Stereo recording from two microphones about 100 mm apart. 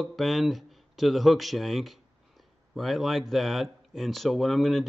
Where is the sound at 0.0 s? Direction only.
Centre (ahead or behind).